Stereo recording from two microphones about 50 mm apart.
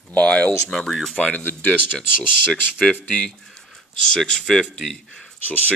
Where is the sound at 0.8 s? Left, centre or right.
Centre.